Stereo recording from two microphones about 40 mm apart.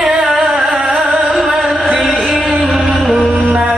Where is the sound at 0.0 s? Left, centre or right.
Centre.